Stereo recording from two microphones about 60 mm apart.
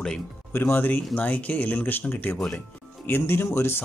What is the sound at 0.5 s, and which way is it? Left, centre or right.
Speech, left.